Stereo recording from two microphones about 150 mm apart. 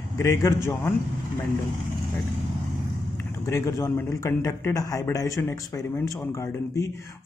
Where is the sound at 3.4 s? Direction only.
20° left (ahead or behind).